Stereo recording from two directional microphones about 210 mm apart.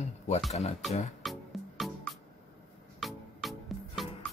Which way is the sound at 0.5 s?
30° left (ahead or behind).